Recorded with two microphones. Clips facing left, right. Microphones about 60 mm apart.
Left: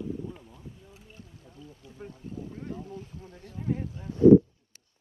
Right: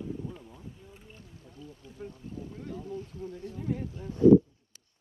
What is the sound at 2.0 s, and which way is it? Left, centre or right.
Speech, left.